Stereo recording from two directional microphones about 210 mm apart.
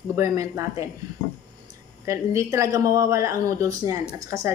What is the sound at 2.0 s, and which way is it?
A woman's voice, 15° right (ahead or behind).